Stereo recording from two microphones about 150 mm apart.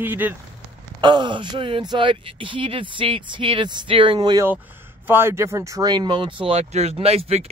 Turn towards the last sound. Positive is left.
turn(degrees=-45)  # may be behind; listen again after turning